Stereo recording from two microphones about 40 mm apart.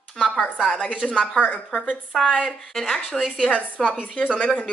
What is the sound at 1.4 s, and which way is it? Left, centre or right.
Speech, left.